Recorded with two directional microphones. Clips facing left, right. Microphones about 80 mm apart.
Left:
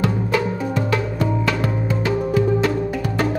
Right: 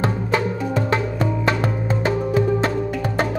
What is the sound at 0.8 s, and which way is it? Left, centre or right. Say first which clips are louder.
Music: even; right.